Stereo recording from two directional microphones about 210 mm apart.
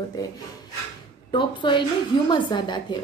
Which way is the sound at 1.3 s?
25° left (ahead or behind).